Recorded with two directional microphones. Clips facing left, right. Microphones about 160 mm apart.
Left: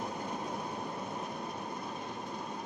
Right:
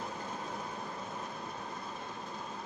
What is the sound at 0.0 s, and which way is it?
Train, 15° left (ahead or behind).